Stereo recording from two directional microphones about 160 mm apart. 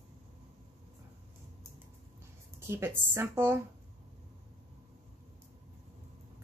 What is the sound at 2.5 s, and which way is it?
Speech, 15° right (ahead or behind).